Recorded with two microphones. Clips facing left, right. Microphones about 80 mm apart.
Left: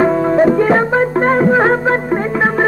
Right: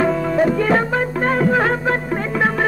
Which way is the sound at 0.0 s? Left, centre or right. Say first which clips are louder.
Left 5 dB; left.